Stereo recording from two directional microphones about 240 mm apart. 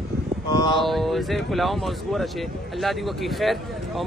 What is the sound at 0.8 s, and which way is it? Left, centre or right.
Speech, centre.